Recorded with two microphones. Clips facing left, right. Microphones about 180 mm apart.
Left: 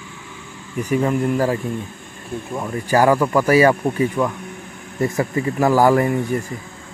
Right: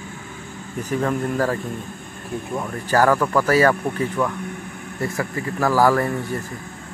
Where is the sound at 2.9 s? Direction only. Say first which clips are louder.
Left 2 dB; 15° left (ahead or behind).